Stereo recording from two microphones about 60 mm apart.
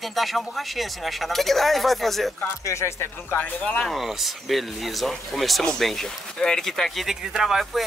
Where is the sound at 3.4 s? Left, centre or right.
Centre.